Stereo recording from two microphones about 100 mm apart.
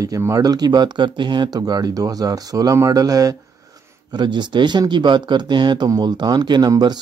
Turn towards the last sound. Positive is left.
turn(degrees=-40)  # may be behind; listen again after turning